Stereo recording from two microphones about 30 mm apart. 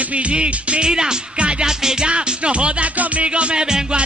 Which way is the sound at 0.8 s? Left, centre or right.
Right.